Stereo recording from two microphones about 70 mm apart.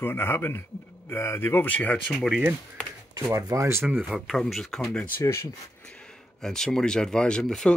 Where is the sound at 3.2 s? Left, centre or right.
Right.